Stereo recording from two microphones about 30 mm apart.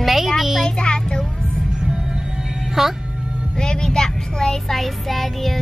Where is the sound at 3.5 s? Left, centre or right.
Left.